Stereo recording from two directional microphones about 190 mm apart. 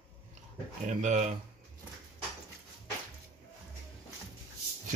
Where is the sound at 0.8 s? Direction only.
40° right (ahead or behind).